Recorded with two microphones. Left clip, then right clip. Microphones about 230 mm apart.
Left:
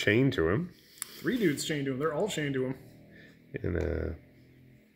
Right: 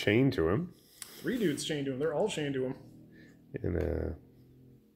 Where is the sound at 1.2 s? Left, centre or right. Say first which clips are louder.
Left 3 dB; left.